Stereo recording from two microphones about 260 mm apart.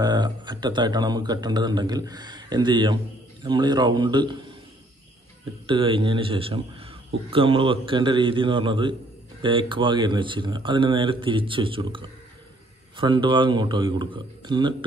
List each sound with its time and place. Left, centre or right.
0.0 s speech: centre
5.7 s speech: centre